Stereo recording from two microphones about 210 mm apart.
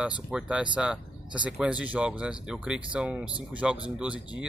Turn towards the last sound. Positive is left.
turn(degrees=-5)  # may be behind; listen again after turning